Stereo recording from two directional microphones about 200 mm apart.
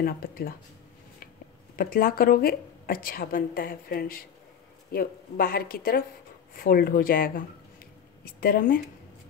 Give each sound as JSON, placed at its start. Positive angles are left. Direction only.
{"t": 0.0, "sound": "a woman's voice", "side_deg": 45}
{"t": 1.8, "sound": "a woman's voice", "side_deg": 45}